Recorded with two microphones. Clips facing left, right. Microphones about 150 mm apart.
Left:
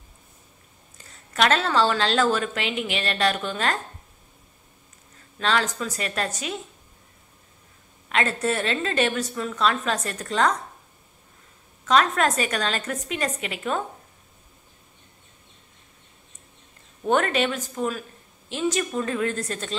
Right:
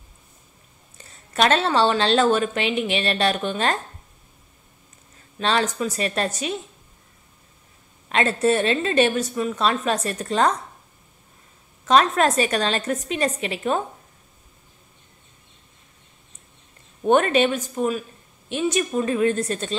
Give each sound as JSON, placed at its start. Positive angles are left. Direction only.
{"t": 1.3, "sound": "a woman's voice", "side_deg": -25}
{"t": 5.4, "sound": "a woman's voice", "side_deg": -25}
{"t": 8.1, "sound": "a woman's voice", "side_deg": -25}
{"t": 11.8, "sound": "a woman's voice", "side_deg": -25}
{"t": 17.0, "sound": "a woman's voice", "side_deg": -20}